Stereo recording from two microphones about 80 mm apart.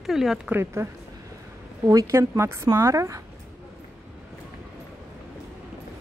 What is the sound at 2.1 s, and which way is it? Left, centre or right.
Speech, right.